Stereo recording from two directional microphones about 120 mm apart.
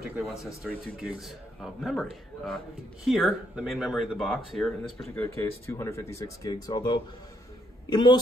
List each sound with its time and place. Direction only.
0.2 s a man's voice: 5° right (ahead or behind)
5.1 s speech: 15° left (ahead or behind); by 8.2 s 40° left (ahead or behind)